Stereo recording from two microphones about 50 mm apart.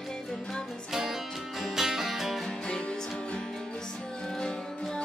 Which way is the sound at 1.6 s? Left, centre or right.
Centre.